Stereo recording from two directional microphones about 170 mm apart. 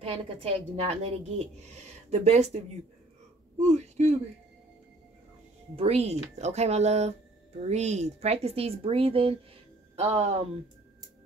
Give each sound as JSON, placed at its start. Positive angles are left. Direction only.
{"t": 0.0, "sound": "speech", "side_deg": -35}
{"t": 3.6, "sound": "speech", "side_deg": -40}
{"t": 5.8, "sound": "speech", "side_deg": -35}